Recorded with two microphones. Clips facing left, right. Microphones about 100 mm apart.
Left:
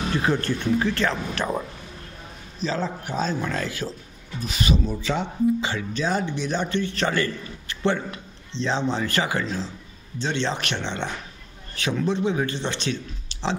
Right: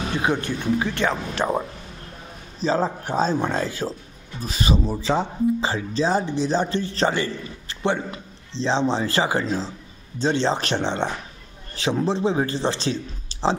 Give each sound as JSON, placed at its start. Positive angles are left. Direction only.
{"t": 0.1, "sound": "speech", "side_deg": -15}
{"t": 2.6, "sound": "speech", "side_deg": -35}
{"t": 13.3, "sound": "a sound", "side_deg": -35}